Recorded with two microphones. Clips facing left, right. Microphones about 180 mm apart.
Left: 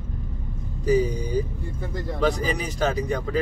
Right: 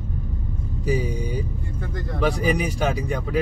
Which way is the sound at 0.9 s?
10° right (ahead or behind).